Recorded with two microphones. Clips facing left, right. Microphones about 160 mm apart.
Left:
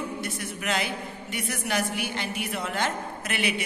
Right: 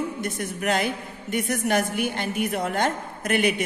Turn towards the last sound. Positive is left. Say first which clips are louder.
# right 6 dB
turn(degrees=-45)  # may be behind; listen again after turning